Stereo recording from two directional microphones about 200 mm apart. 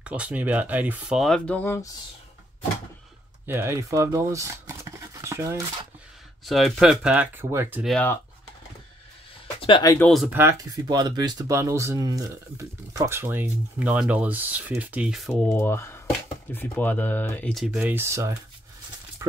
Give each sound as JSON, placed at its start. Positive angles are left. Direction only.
{"t": 0.0, "sound": "speech", "side_deg": -5}
{"t": 3.4, "sound": "speech", "side_deg": -10}
{"t": 5.2, "sound": "a sound", "side_deg": -15}
{"t": 6.4, "sound": "speech", "side_deg": 0}
{"t": 7.9, "sound": "speech", "side_deg": 10}
{"t": 9.6, "sound": "speech", "side_deg": 25}
{"t": 9.9, "sound": "speech", "side_deg": 5}
{"t": 10.2, "sound": "speech", "side_deg": -10}